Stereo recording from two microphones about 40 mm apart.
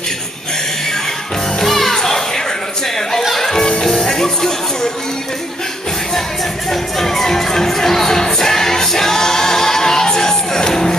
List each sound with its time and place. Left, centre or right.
1.6 s music: centre
6.7 s music: centre